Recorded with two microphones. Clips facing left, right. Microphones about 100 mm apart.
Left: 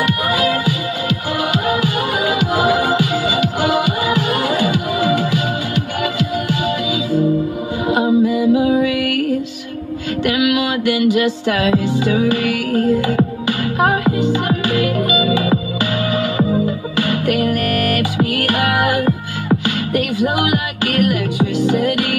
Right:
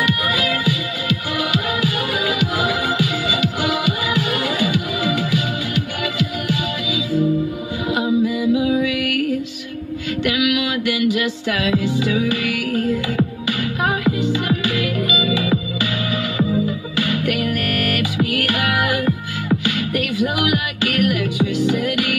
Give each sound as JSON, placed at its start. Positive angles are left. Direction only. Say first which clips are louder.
{"t": 0.0, "sound": "music", "louder": "left 4 dB", "side_deg": 35}
{"t": 7.9, "sound": "music", "louder": "left 4 dB", "side_deg": 40}
{"t": 10.2, "sound": "music", "louder": "left 3 dB", "side_deg": 35}